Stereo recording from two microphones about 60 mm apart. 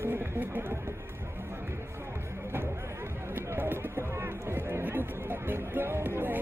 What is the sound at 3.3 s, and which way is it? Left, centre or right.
Speech, right.